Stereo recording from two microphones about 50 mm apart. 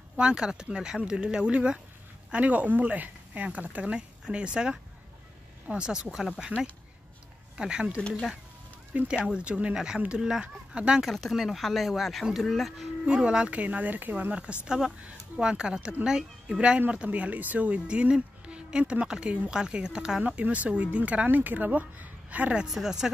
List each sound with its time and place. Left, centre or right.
0.2 s speech: centre
2.3 s speech: right; by 6.4 s centre
7.5 s speech: centre
10.4 s speech: right
11.0 s speech: centre
13.0 s speech: centre
13.6 s speech: right
14.3 s speech: right
22.7 s speech: centre